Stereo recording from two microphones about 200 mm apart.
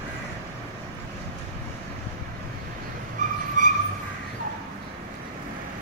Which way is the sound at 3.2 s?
40° right (ahead or behind).